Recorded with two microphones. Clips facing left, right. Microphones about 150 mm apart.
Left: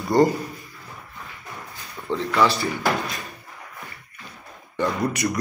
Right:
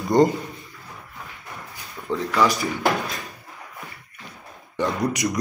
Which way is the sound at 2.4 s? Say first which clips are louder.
Right 1 dB; 15° right (ahead or behind).